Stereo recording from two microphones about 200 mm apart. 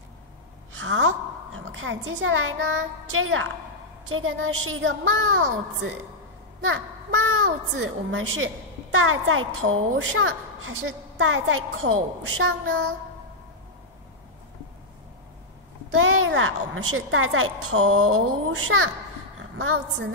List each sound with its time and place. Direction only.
0.7 s a woman's voice: 70° right (ahead or behind)
16.0 s a woman's voice: 90° right
19.5 s a woman's voice: 85° right